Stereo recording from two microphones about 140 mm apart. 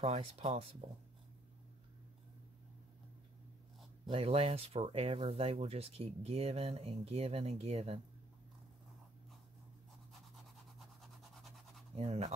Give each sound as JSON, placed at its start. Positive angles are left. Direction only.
{"t": 0.0, "sound": "speech", "side_deg": -45}
{"t": 4.1, "sound": "speech", "side_deg": -45}
{"t": 11.0, "sound": "scratch", "side_deg": 0}
{"t": 11.9, "sound": "speech", "side_deg": -45}